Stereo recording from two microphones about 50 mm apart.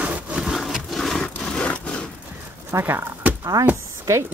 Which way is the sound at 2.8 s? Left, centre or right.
Right.